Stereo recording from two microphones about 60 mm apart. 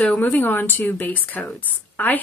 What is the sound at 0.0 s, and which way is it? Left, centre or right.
Speech, left.